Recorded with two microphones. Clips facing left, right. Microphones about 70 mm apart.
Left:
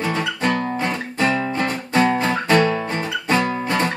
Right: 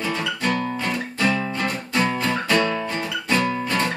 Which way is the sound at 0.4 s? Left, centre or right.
Left.